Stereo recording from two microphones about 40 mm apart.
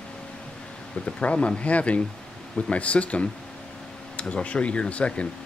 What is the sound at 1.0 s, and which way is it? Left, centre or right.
Speech, left.